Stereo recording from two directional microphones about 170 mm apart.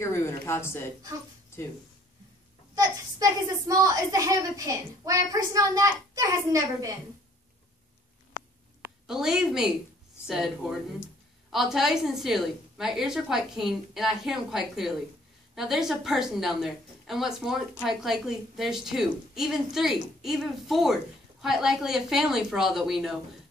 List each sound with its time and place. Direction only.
0.0 s speech: 15° left (ahead or behind)
2.7 s a child's voice: 20° right (ahead or behind)
9.0 s a woman's voice: 5° right (ahead or behind)
11.5 s a woman's voice: centre (ahead or behind)